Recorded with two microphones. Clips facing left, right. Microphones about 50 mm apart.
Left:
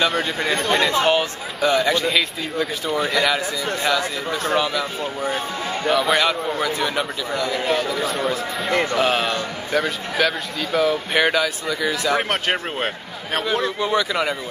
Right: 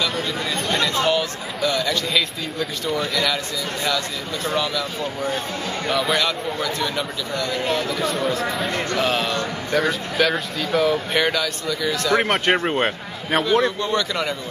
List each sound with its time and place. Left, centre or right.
0.1 s speech: centre
0.7 s speech: left
2.0 s a man's voice: centre
4.6 s a man's voice: centre
5.9 s speech: centre
6.1 s a man's voice: centre
11.2 s a man's voice: centre
12.2 s speech: centre
13.7 s a man's voice: centre